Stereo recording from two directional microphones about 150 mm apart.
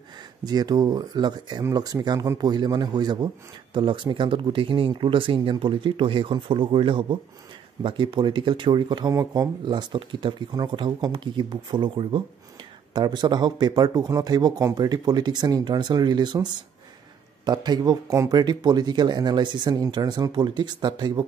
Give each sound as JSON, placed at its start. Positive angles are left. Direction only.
{"t": 0.5, "sound": "speech", "side_deg": -25}
{"t": 17.5, "sound": "speech", "side_deg": -25}